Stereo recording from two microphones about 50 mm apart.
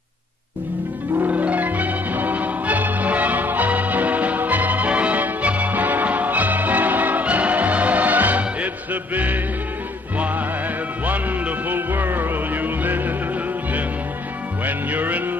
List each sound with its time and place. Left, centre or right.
1.2 s music: right
11.1 s music: right
11.9 s music: right
14.6 s music: right